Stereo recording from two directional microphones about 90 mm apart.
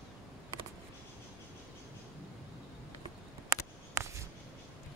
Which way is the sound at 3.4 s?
35° right (ahead or behind).